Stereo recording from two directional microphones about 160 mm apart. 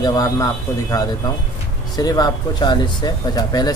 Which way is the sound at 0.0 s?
20° left (ahead or behind).